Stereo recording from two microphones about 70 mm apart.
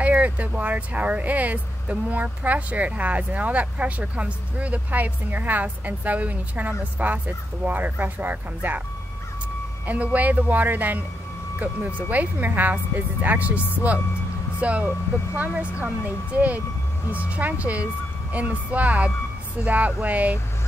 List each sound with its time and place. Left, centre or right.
0.0 s speech: right
9.8 s speech: right